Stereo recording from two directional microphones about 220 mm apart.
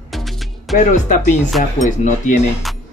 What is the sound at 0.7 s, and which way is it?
Music, 40° left (ahead or behind).